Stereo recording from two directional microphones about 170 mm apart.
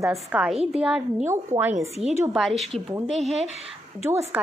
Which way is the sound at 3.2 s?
40° right (ahead or behind).